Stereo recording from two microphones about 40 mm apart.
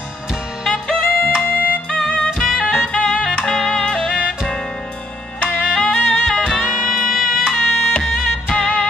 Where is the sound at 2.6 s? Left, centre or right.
Left.